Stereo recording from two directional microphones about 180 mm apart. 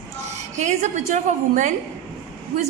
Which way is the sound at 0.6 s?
40° right (ahead or behind).